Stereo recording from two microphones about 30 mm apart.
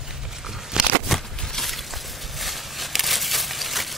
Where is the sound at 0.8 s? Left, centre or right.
Right.